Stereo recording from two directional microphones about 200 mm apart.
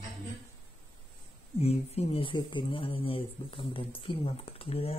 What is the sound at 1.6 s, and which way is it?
Speech, 30° left (ahead or behind).